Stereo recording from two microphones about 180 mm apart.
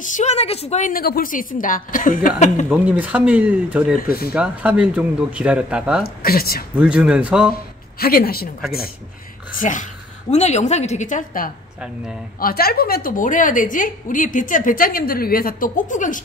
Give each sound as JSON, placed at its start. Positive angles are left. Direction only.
{"t": 0.0, "sound": "a woman's voice", "side_deg": 40}
{"t": 2.7, "sound": "speech", "side_deg": -10}
{"t": 6.0, "sound": "speech", "side_deg": 55}
{"t": 6.7, "sound": "speech", "side_deg": -5}
{"t": 8.0, "sound": "speech", "side_deg": 55}
{"t": 9.5, "sound": "a woman's voice", "side_deg": 45}